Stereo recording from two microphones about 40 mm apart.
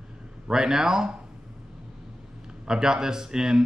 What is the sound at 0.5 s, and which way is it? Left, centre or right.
Speech, centre.